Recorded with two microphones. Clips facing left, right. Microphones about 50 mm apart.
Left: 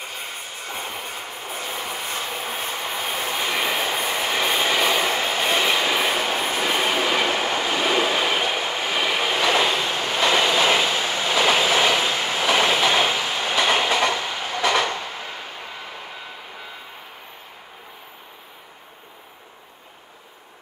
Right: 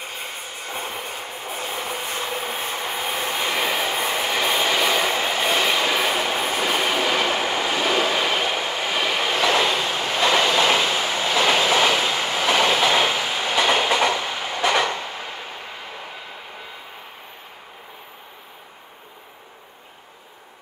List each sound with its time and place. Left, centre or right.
0.7 s train: right
3.5 s train: centre